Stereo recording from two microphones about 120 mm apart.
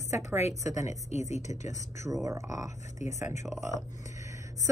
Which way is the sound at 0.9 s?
70° left (ahead or behind).